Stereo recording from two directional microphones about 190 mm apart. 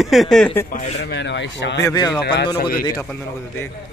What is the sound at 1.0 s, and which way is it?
Speech, 70° left (ahead or behind).